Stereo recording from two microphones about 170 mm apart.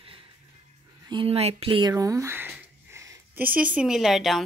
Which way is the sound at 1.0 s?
30° right (ahead or behind).